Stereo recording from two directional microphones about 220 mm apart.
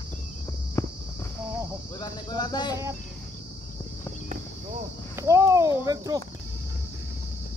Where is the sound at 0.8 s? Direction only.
10° left (ahead or behind).